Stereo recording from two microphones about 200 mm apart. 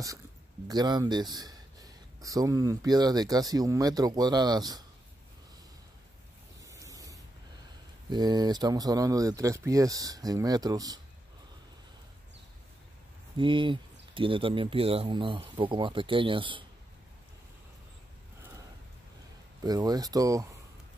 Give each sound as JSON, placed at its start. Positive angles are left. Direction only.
{"t": 0.7, "sound": "speech", "side_deg": -20}
{"t": 6.7, "sound": "spray", "side_deg": -15}
{"t": 8.1, "sound": "speech", "side_deg": -20}
{"t": 13.4, "sound": "speech", "side_deg": -25}
{"t": 19.6, "sound": "speech", "side_deg": -20}